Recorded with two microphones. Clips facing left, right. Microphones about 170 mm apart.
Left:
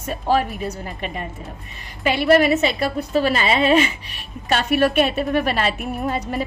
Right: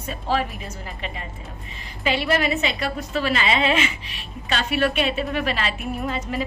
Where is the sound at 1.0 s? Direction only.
50° left (ahead or behind).